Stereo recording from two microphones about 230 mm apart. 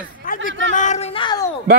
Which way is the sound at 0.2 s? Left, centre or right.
Left.